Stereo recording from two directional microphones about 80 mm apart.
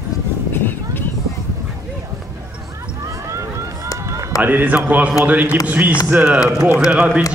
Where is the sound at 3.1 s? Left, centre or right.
Right.